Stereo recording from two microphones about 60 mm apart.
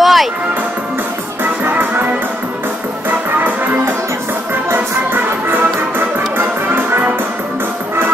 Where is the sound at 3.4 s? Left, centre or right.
Right.